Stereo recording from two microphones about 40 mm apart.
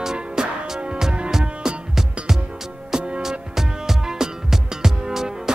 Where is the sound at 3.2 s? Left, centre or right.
Centre.